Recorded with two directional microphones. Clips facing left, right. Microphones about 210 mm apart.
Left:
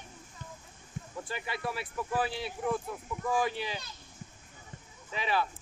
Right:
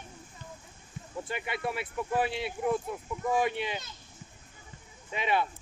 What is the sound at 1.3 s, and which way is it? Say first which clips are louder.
Speech: right 3 dB; 20° right (ahead or behind).